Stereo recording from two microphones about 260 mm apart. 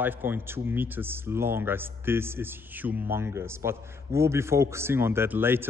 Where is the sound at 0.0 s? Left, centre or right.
Centre.